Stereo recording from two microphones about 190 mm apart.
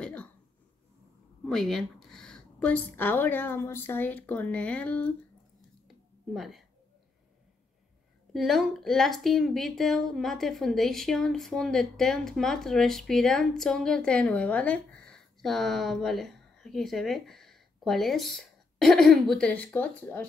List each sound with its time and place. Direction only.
0.0 s a sound: 5° left (ahead or behind)
1.4 s a woman's voice: centre (ahead or behind)
6.3 s speech: centre (ahead or behind)
8.3 s speech: centre (ahead or behind)